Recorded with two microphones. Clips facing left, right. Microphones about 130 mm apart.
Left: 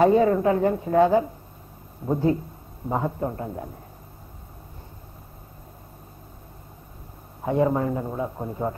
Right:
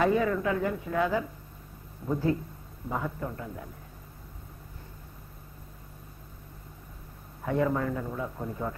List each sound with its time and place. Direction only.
0.0 s a woman's voice: 35° left (ahead or behind)
7.4 s a man's voice: 25° left (ahead or behind)